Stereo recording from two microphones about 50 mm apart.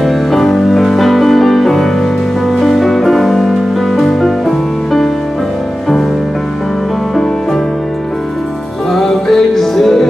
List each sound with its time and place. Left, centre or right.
0.0 s music: centre
8.9 s music: centre